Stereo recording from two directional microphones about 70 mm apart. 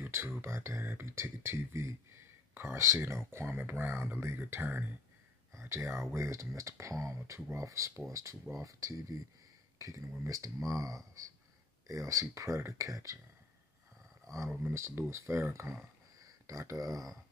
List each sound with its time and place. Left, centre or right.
0.1 s speech: right
14.6 s speech: right
16.2 s speech: right